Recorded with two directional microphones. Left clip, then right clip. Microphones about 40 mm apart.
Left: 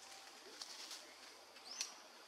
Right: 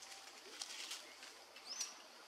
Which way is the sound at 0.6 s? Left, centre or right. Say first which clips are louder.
Right 4 dB; right.